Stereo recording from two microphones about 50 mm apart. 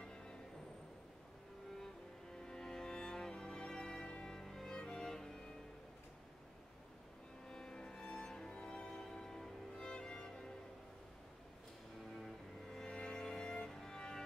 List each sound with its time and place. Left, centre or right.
0.0 s music: centre
2.4 s music: centre
7.4 s music: centre
12.7 s music: centre